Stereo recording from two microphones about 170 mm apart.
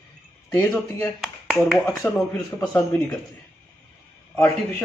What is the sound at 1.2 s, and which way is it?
A man's voice, centre (ahead or behind).